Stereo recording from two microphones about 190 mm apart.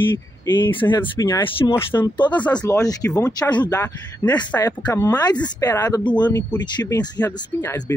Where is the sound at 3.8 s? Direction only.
10° left (ahead or behind).